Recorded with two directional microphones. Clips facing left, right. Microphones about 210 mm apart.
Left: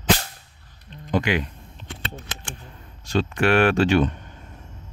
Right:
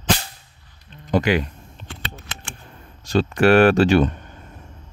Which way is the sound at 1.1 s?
40° right (ahead or behind).